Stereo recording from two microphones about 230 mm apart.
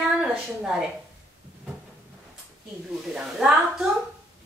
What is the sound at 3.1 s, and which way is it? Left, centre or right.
Speech, centre.